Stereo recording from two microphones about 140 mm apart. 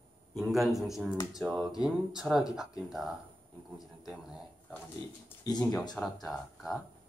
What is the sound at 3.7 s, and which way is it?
Speech, centre (ahead or behind).